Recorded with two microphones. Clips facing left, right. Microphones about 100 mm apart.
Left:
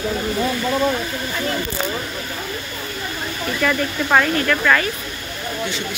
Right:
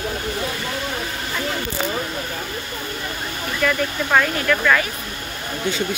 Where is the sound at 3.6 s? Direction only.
5° left (ahead or behind).